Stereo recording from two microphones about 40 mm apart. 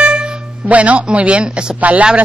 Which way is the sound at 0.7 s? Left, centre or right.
Right.